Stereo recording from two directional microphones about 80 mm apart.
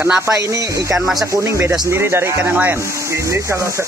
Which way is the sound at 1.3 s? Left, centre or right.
Right.